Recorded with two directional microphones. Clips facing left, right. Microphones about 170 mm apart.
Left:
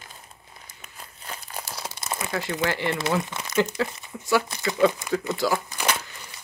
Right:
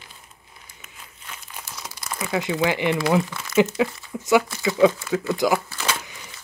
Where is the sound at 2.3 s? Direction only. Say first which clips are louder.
Right 5 dB; 15° right (ahead or behind).